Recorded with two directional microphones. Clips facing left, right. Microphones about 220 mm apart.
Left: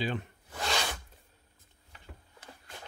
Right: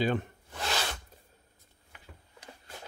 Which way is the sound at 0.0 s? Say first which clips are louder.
Right 5 dB; 50° right (ahead or behind).